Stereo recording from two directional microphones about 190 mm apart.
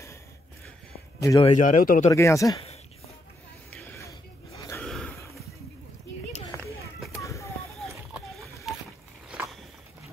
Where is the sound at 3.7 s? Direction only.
10° left (ahead or behind).